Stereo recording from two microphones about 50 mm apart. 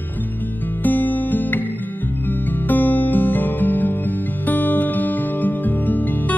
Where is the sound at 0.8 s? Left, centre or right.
Left.